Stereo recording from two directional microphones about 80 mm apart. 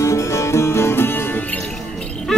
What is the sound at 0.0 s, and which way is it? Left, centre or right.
Music, left.